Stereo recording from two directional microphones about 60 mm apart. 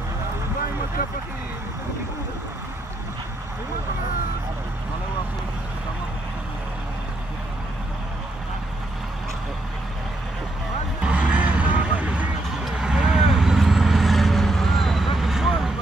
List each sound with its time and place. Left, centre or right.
11.0 s music: centre
12.6 s vehicle: centre